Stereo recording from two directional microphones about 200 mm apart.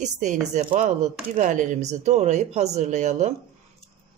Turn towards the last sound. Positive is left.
turn(degrees=-35)  # may be behind; listen again after turning